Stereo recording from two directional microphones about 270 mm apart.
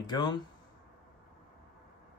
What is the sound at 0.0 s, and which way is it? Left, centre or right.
Speech, centre.